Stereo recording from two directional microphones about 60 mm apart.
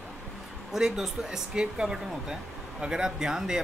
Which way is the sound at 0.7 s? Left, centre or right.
Centre.